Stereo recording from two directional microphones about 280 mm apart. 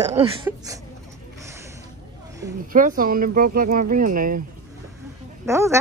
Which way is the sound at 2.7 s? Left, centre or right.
Right.